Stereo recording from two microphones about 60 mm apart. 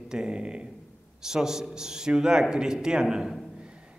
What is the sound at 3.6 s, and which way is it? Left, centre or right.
Music, centre.